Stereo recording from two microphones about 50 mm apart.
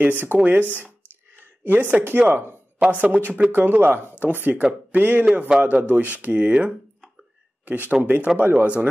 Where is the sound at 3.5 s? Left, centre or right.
Right.